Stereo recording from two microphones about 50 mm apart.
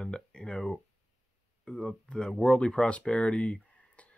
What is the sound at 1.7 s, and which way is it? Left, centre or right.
Speech, centre.